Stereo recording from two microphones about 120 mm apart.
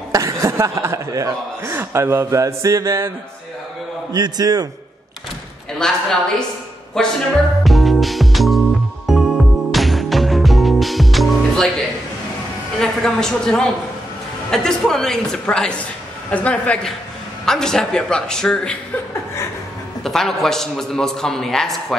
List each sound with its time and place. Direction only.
0.1 s speech: 25° right (ahead or behind)
4.1 s a man's voice: 35° right (ahead or behind)
5.8 s a man's voice: 5° left (ahead or behind)
7.6 s music: centre (ahead or behind)
12.8 s a man's voice: 5° left (ahead or behind)
20.0 s a man's voice: 5° left (ahead or behind)